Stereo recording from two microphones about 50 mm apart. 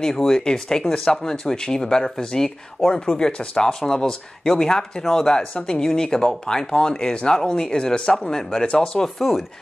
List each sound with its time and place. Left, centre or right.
0.0 s speech: centre
5.4 s speech: left